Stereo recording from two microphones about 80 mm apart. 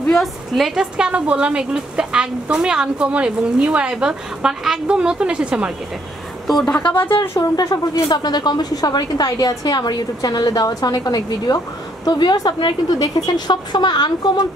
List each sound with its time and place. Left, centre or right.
0.1 s speech: centre
6.8 s speech: left
7.5 s a woman's voice: left
12.1 s a woman's voice: left